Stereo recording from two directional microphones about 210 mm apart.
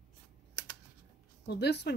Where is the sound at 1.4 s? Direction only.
55° left (ahead or behind).